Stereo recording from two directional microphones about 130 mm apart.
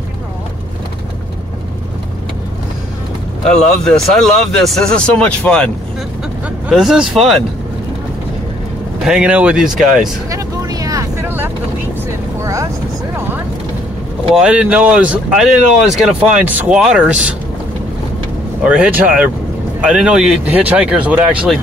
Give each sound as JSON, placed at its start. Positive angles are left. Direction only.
{"t": 3.4, "sound": "speech", "side_deg": 5}
{"t": 6.7, "sound": "speech", "side_deg": -5}
{"t": 9.0, "sound": "speech", "side_deg": -5}
{"t": 10.3, "sound": "vehicle", "side_deg": -25}
{"t": 14.3, "sound": "speech", "side_deg": -10}
{"t": 18.6, "sound": "speech", "side_deg": -10}